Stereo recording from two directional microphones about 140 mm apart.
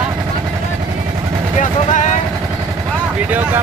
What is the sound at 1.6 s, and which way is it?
Speech, 60° left (ahead or behind).